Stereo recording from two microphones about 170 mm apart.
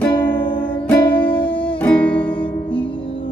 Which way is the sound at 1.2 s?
30° left (ahead or behind).